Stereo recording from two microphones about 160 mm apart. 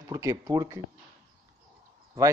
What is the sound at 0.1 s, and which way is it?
Speech, 25° right (ahead or behind).